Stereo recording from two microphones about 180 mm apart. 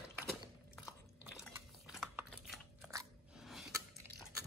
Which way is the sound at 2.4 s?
Centre (ahead or behind).